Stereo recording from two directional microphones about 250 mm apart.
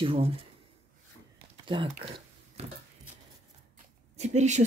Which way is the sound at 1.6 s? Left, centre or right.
Centre.